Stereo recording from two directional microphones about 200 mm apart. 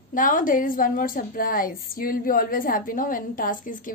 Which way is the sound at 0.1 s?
40° left (ahead or behind).